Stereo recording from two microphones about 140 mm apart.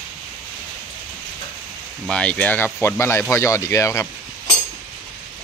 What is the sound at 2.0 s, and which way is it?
Speech, 10° left (ahead or behind).